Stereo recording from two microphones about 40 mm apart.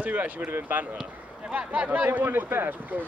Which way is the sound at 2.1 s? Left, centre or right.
Right.